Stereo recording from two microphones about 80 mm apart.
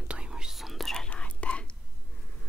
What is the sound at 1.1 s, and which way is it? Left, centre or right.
Whispering, centre.